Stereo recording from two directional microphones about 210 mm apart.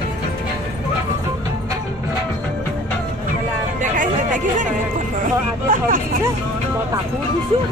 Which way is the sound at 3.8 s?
40° right (ahead or behind).